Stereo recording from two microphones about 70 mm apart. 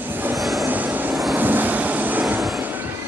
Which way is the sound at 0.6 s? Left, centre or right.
Right.